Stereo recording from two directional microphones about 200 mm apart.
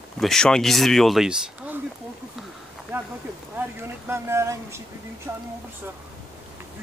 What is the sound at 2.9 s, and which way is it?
Speech, 10° right (ahead or behind).